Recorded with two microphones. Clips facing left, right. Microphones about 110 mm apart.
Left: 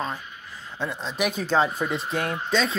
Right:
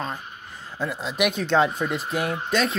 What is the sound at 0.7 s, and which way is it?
Speech, centre (ahead or behind).